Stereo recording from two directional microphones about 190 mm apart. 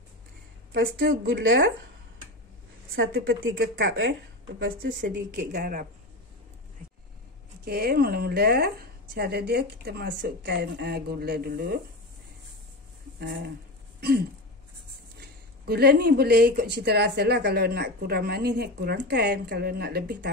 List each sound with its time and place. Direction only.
0.9 s a woman's voice: 50° right (ahead or behind)
1.4 s speech: 80° right
3.0 s a woman's voice: 60° right (ahead or behind)
7.6 s speech: 55° right (ahead or behind)
15.1 s speech: 55° right (ahead or behind)